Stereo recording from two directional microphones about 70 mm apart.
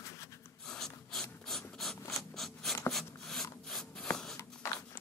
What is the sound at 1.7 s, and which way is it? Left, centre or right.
Mechanisms, centre.